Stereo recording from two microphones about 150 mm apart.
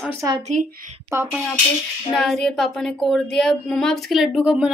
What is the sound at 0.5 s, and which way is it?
Speech, 60° right (ahead or behind).